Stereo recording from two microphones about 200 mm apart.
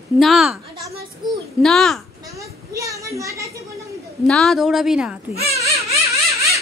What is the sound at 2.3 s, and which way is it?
A child's voice, 15° right (ahead or behind).